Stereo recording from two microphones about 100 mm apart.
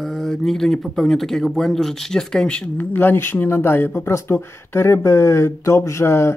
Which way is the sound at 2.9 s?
20° left (ahead or behind).